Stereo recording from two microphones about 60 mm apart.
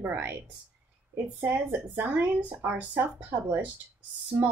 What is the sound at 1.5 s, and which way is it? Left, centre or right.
Speech, right.